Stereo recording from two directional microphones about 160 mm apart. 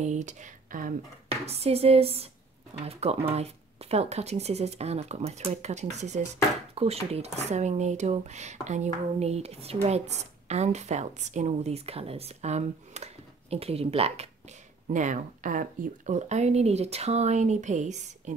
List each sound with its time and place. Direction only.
0.0 s speech: 45° right (ahead or behind)
1.4 s speech: 40° right (ahead or behind)
14.9 s speech: 50° right (ahead or behind)